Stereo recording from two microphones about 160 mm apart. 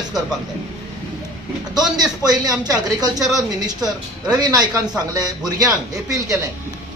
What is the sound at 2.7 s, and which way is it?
Speech, 25° right (ahead or behind).